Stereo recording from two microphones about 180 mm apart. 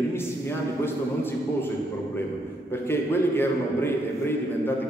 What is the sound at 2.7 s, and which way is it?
A man's voice, 10° left (ahead or behind).